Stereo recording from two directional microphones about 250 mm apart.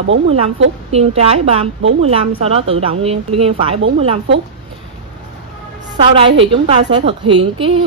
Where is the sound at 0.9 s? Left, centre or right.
Right.